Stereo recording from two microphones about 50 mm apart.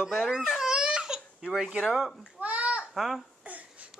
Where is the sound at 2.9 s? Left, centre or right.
Centre.